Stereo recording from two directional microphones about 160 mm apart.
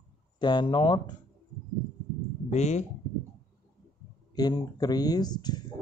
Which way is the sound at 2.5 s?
45° left (ahead or behind).